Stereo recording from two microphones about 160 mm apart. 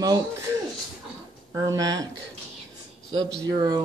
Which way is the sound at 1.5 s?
25° right (ahead or behind).